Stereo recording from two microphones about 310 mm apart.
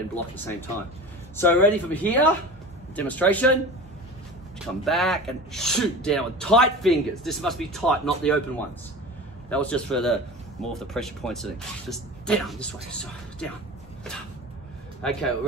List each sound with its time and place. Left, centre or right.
0.1 s speech: centre
4.8 s speech: centre
9.5 s speech: centre
15.0 s speech: centre